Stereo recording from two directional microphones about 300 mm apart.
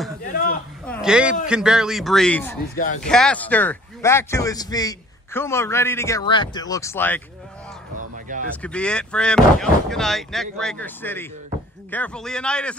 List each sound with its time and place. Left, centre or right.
0.2 s a sound: left
0.8 s speech: centre
8.5 s speech: centre